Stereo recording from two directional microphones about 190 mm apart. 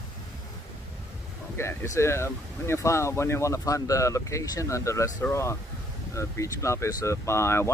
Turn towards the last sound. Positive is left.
turn(degrees=15)  # may be behind; listen again after turning